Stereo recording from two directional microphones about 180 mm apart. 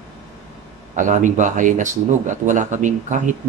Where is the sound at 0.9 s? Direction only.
45° right (ahead or behind).